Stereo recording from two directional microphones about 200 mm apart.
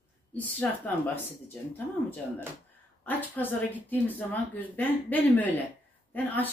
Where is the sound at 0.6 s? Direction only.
5° left (ahead or behind).